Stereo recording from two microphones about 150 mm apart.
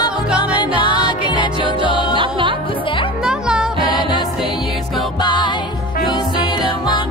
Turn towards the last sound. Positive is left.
turn(degrees=30)  # may be behind; listen again after turning